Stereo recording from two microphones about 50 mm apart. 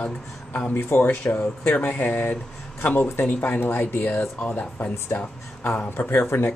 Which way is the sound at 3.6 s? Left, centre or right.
Left.